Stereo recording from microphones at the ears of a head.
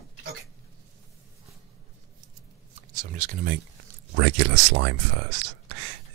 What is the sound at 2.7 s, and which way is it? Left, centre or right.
Speech, right.